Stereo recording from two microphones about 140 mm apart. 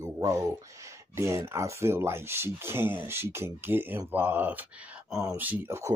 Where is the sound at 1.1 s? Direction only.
20° right (ahead or behind).